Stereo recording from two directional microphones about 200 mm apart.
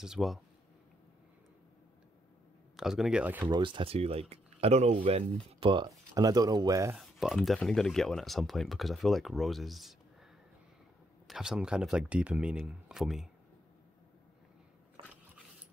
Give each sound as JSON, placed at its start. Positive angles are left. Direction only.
{"t": 0.0, "sound": "speech", "side_deg": 0}
{"t": 2.7, "sound": "speech", "side_deg": 0}
{"t": 3.4, "sound": "speech", "side_deg": -25}
{"t": 7.0, "sound": "speech", "side_deg": 0}
{"t": 11.2, "sound": "speech", "side_deg": 0}